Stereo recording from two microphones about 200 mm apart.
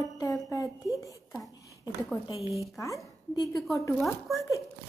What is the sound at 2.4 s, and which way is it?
Speech, 15° right (ahead or behind).